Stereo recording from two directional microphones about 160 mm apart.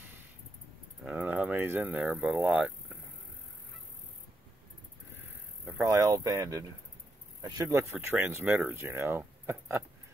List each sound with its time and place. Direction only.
1.0 s speech: 10° right (ahead or behind)
5.9 s speech: 20° right (ahead or behind)